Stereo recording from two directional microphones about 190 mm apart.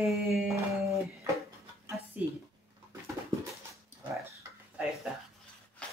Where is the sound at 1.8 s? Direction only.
15° right (ahead or behind).